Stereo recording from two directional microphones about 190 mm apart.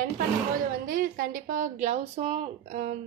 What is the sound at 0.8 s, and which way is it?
A woman's voice, 45° right (ahead or behind).